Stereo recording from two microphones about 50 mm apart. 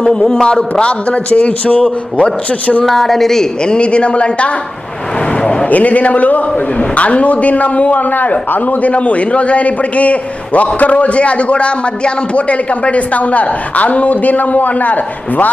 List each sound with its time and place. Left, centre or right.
0.0 s a man's voice: centre
2.8 s a man's voice: centre
5.7 s a man's voice: left